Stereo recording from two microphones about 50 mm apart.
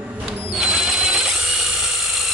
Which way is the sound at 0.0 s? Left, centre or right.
Right.